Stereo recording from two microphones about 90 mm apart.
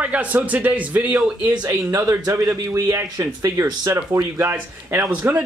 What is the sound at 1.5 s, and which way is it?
Speech, 50° right (ahead or behind).